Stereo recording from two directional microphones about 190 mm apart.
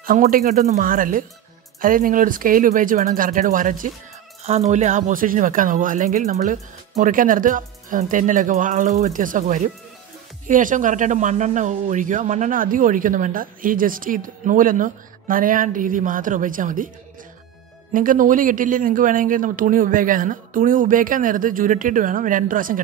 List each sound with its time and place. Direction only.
0.0 s speech: 45° right (ahead or behind)
17.9 s speech: 45° right (ahead or behind)